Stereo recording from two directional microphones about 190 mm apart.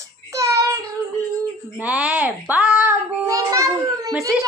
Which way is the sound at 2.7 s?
10° right (ahead or behind).